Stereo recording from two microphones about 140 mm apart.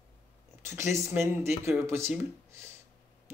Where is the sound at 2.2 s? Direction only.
20° right (ahead or behind).